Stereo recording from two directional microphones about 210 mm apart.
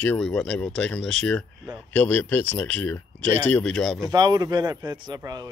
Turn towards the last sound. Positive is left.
turn(degrees=-15)  # may be behind; listen again after turning